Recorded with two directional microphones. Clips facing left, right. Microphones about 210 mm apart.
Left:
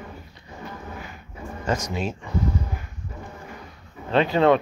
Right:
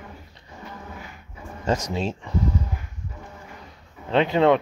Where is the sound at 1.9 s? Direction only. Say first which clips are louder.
Right 1 dB; 30° right (ahead or behind).